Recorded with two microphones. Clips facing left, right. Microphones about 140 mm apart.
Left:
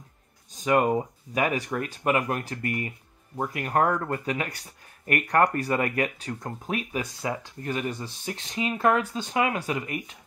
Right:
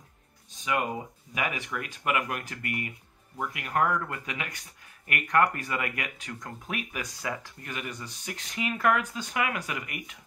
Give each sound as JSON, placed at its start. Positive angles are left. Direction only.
{"t": 0.5, "sound": "speech", "side_deg": 40}